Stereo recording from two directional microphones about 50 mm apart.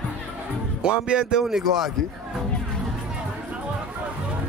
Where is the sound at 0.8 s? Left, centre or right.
Centre.